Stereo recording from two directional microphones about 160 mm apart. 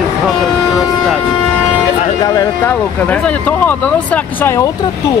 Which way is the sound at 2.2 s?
20° left (ahead or behind).